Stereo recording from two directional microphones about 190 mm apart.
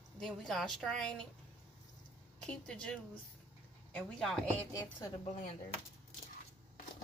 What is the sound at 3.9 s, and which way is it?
Speech, 5° left (ahead or behind).